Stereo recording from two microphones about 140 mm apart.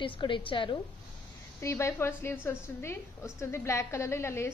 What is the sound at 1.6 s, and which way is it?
A woman's voice, 20° left (ahead or behind).